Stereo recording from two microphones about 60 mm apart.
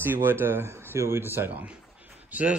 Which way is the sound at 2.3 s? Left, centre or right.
Right.